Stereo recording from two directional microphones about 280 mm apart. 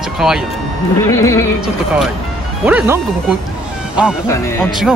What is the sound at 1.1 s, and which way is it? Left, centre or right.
Music, centre.